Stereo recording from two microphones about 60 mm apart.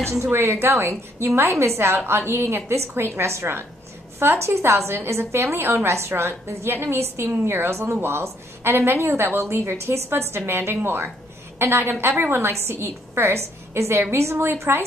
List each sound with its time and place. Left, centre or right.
0.2 s a woman's voice: right
7.9 s a woman's voice: right